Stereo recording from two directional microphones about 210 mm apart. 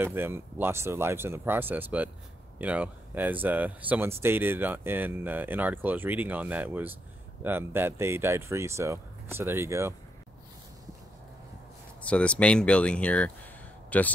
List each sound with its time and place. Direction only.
0.0 s speech: 10° right (ahead or behind)
12.0 s speech: 5° left (ahead or behind)